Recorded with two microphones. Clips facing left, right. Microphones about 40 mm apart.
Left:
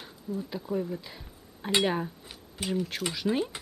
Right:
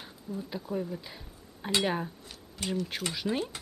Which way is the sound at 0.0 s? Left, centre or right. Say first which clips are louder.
Left 3 dB; centre.